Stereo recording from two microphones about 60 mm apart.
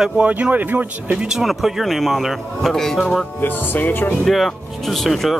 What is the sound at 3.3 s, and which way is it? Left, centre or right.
Speech, left.